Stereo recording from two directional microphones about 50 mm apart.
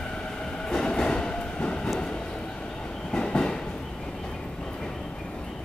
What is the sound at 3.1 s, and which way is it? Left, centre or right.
Train, centre.